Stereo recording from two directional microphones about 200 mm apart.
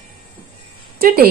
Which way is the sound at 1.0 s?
50° right (ahead or behind).